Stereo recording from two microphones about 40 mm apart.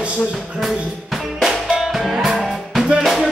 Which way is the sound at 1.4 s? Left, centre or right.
Centre.